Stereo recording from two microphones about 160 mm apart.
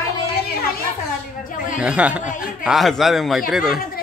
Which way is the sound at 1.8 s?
5° right (ahead or behind).